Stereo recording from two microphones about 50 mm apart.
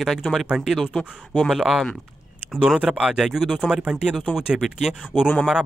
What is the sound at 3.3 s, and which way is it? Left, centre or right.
Speech, centre.